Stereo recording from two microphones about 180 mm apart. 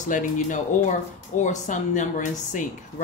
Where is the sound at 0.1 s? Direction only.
45° left (ahead or behind).